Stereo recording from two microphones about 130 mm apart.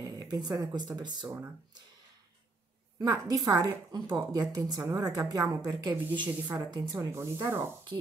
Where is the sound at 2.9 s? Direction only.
30° right (ahead or behind).